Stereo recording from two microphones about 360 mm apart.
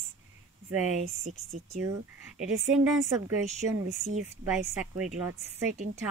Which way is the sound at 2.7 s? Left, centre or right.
Centre.